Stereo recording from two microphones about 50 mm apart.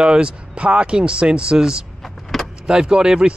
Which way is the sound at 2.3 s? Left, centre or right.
Centre.